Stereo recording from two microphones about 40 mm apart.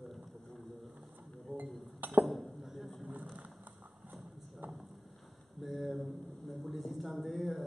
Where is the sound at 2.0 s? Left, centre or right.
Right.